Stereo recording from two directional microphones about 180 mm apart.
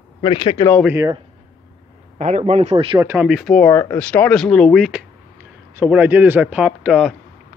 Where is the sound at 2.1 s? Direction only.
40° right (ahead or behind).